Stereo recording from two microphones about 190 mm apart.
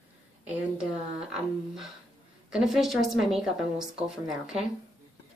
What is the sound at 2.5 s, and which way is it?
Speech, centre (ahead or behind).